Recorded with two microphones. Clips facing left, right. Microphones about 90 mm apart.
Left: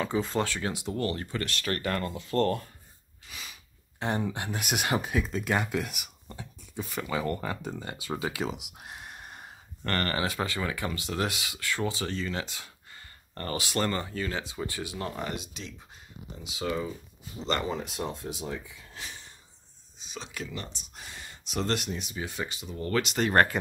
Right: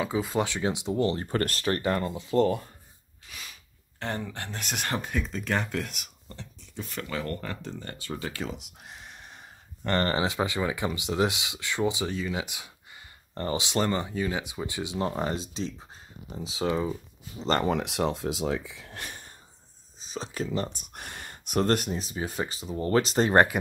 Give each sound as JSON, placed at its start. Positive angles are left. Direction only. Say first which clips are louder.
{"t": 0.0, "sound": "speech", "louder": "right 1 dB", "side_deg": -5}
{"t": 1.3, "sound": "speech", "louder": "right 6 dB", "side_deg": -45}
{"t": 1.6, "sound": "speech", "louder": "right 1 dB", "side_deg": -25}
{"t": 2.1, "sound": "speech", "louder": "right 2 dB", "side_deg": -10}
{"t": 3.3, "sound": "sneeze", "louder": "even", "side_deg": 0}
{"t": 4.0, "sound": "speech", "louder": "left 3 dB", "side_deg": 15}
{"t": 6.8, "sound": "sneeze", "louder": "left 2 dB", "side_deg": 5}
{"t": 7.1, "sound": "speech", "louder": "left 3 dB", "side_deg": 15}
{"t": 8.8, "sound": "a sound", "louder": "left 2 dB", "side_deg": 5}
{"t": 9.8, "sound": "speech", "louder": "right 3 dB", "side_deg": -25}
{"t": 17.6, "sound": "speech", "louder": "right 6 dB", "side_deg": -75}
{"t": 20.0, "sound": "speech", "louder": "right 6 dB", "side_deg": -35}
{"t": 20.8, "sound": "speech", "louder": "right 4 dB", "side_deg": -60}